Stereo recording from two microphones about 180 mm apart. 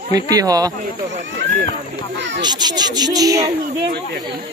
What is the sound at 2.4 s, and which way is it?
Speech, 25° right (ahead or behind).